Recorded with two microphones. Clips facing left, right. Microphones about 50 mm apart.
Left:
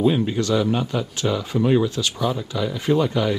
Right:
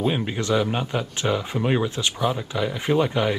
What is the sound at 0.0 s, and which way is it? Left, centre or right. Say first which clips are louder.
Speech: left 5 dB; right.